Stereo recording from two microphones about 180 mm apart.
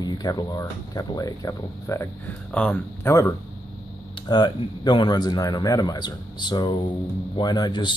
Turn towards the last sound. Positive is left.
turn(degrees=25)  # may be behind; listen again after turning